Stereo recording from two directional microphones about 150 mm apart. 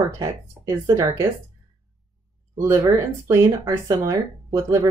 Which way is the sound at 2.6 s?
20° right (ahead or behind).